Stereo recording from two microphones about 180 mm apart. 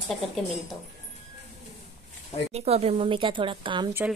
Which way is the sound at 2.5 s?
35° right (ahead or behind).